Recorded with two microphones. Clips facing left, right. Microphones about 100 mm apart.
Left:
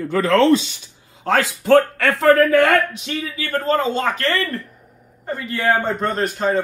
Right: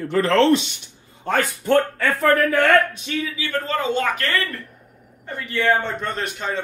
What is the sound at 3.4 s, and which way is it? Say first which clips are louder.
Speech: left 7 dB; 40° left (ahead or behind).